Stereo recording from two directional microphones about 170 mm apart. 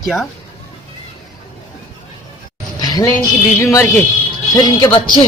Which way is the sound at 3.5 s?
15° left (ahead or behind).